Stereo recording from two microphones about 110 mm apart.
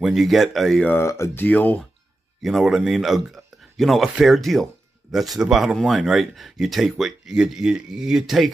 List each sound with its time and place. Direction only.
0.0 s speech: centre (ahead or behind)
0.8 s speech: 20° left (ahead or behind)
2.4 s speech: 5° right (ahead or behind)